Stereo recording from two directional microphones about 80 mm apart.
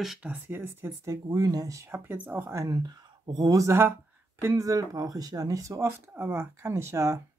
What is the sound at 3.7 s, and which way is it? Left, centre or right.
Speech, right.